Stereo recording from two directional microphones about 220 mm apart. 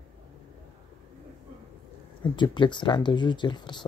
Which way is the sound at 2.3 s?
20° left (ahead or behind).